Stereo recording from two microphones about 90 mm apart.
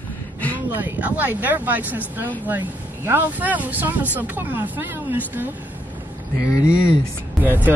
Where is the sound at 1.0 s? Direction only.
20° right (ahead or behind).